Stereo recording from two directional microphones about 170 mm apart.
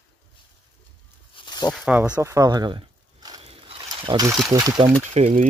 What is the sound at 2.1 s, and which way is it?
Speech, 20° right (ahead or behind).